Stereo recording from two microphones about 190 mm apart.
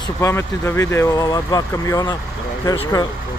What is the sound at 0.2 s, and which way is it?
Speech, 15° left (ahead or behind).